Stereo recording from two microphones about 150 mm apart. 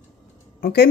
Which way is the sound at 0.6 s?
90° left.